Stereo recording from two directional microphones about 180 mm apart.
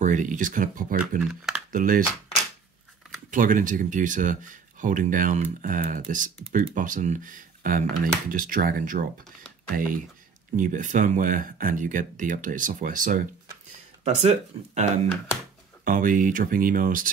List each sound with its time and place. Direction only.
0.0 s speech: 45° right (ahead or behind)
1.2 s speech: 5° right (ahead or behind)
1.7 s speech: 50° right (ahead or behind)
3.3 s speech: 50° right (ahead or behind)
10.5 s speech: 45° right (ahead or behind)
15.8 s speech: 50° right (ahead or behind)